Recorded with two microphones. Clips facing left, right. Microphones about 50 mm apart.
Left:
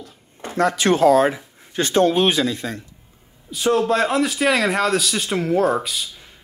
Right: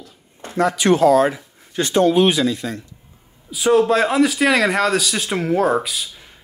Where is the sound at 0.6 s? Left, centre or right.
Left.